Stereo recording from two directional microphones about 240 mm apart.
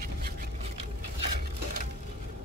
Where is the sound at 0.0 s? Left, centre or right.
Right.